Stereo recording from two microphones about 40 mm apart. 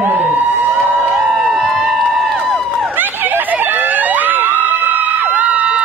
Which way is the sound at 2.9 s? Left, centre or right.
Right.